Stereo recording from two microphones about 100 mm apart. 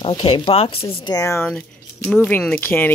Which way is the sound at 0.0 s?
55° left (ahead or behind).